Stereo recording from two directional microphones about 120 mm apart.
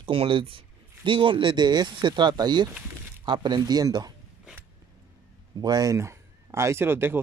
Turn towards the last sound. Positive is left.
turn(degrees=-20)  # may be behind; listen again after turning